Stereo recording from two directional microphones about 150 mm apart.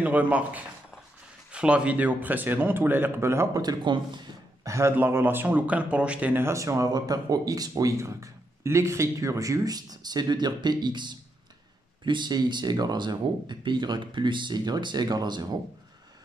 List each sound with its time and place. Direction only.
0.0 s a man's voice: 10° right (ahead or behind); by 15.6 s 30° right (ahead or behind)